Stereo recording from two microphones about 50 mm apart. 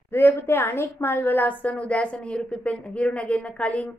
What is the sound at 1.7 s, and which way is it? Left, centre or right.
Speech, left.